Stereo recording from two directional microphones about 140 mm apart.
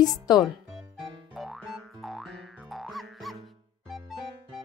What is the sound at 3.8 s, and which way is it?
Music, centre (ahead or behind).